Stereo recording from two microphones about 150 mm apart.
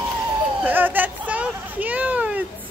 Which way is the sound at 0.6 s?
10° right (ahead or behind).